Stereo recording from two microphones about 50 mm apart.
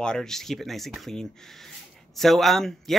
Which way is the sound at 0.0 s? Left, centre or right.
Centre.